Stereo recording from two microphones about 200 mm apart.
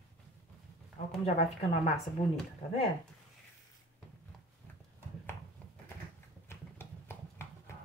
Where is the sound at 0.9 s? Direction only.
30° left (ahead or behind).